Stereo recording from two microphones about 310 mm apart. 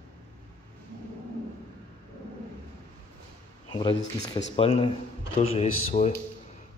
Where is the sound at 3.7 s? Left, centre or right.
Centre.